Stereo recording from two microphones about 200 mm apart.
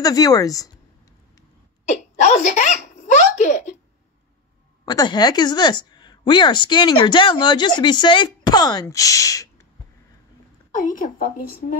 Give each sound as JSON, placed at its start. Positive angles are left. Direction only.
{"t": 0.0, "sound": "a woman's voice", "side_deg": 20}
{"t": 1.9, "sound": "a sound", "side_deg": 35}
{"t": 4.8, "sound": "speech", "side_deg": 20}
{"t": 10.9, "sound": "a woman's voice", "side_deg": 45}